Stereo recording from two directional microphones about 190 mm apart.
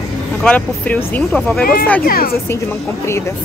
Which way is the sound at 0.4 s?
5° left (ahead or behind).